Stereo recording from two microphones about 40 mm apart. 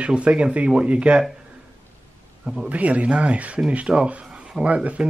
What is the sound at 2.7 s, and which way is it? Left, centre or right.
Speech, right.